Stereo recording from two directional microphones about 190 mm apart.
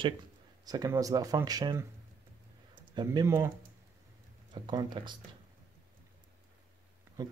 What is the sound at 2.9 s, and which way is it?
Speech, 15° right (ahead or behind).